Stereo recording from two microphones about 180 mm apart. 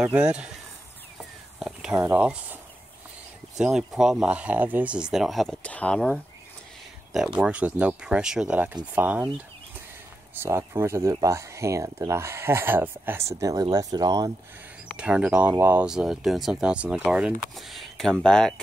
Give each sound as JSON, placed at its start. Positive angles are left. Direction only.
{"t": 0.0, "sound": "speech", "side_deg": -5}
{"t": 1.6, "sound": "speech", "side_deg": -5}
{"t": 7.3, "sound": "speech", "side_deg": -5}
{"t": 10.3, "sound": "speech", "side_deg": -15}
{"t": 15.0, "sound": "speech", "side_deg": -5}